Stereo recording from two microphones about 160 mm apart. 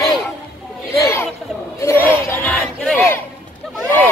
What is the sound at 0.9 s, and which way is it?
Chatter, 20° left (ahead or behind).